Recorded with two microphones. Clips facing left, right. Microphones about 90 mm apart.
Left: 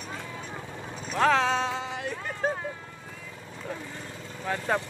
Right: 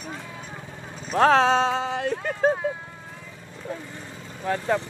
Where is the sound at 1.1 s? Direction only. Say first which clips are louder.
Right 6 dB; 40° right (ahead or behind).